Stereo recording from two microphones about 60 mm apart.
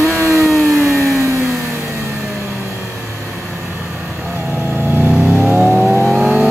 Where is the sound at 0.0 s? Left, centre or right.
Right.